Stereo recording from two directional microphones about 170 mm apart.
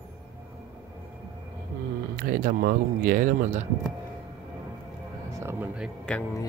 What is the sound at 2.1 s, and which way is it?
Speech, 55° right (ahead or behind).